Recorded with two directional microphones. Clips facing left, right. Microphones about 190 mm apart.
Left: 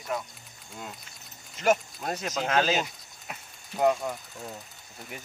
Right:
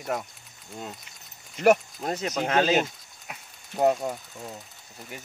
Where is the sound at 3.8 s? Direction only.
30° right (ahead or behind).